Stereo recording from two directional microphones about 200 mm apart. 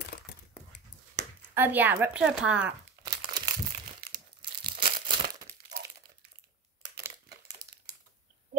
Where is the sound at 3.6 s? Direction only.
35° right (ahead or behind).